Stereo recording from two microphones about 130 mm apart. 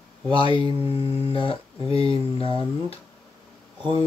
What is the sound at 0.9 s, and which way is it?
Speech, 45° left (ahead or behind).